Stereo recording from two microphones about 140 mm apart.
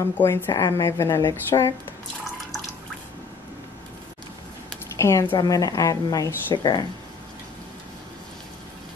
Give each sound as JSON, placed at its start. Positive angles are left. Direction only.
{"t": 0.2, "sound": "a woman's voice", "side_deg": 20}
{"t": 4.9, "sound": "a woman's voice", "side_deg": 20}